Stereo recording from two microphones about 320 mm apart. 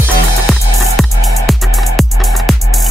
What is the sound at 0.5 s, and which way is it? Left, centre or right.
Music, centre.